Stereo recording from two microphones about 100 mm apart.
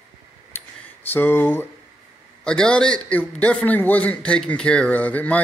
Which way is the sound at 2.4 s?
10° left (ahead or behind).